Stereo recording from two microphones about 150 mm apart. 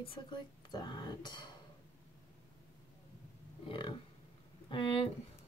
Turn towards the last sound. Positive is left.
turn(degrees=35)  # may be behind; listen again after turning